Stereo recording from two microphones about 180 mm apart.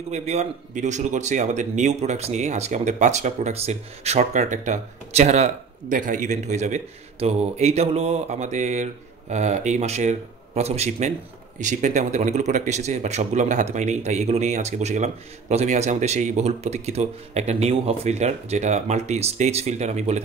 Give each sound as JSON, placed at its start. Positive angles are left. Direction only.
{"t": 0.1, "sound": "a man's voice", "side_deg": -40}